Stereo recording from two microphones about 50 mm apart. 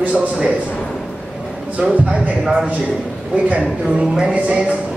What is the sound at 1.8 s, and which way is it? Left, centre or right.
Speech, right.